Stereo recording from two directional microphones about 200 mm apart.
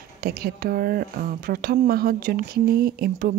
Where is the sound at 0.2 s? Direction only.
45° right (ahead or behind).